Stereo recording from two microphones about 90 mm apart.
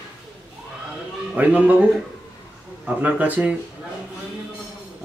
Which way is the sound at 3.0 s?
15° right (ahead or behind).